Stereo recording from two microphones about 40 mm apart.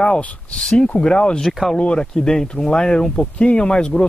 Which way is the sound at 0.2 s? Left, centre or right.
Left.